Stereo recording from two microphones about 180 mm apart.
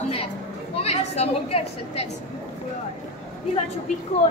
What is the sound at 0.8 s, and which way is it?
A woman's voice, 35° left (ahead or behind).